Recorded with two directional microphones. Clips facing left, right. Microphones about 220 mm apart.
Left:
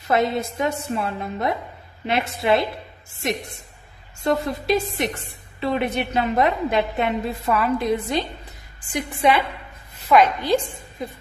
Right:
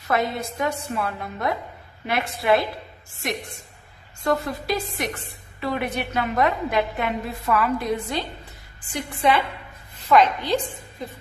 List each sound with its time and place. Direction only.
0.1 s a woman's voice: 25° left (ahead or behind); by 10.3 s 5° left (ahead or behind)